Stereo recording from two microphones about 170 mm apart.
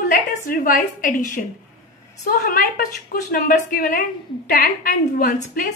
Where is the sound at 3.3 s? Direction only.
55° left (ahead or behind).